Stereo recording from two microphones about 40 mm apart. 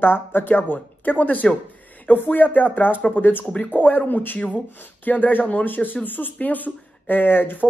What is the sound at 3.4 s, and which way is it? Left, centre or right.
Speech, left.